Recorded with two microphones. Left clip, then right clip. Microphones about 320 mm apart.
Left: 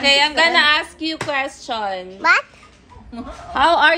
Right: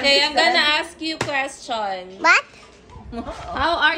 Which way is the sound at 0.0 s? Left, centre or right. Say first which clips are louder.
Left 2 dB; left.